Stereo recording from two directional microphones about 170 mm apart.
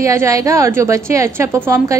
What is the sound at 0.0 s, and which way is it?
A woman's voice, 15° right (ahead or behind).